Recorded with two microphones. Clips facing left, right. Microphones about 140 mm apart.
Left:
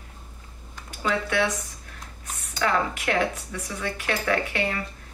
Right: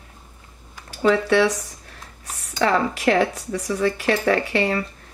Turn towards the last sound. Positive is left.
turn(degrees=-35)  # may be behind; listen again after turning